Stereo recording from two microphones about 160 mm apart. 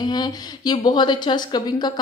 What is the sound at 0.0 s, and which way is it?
Speech, 25° left (ahead or behind).